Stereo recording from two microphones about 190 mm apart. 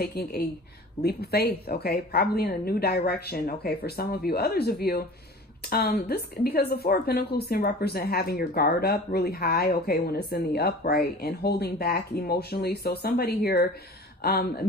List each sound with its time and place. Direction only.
0.0 s speech: 55° left (ahead or behind)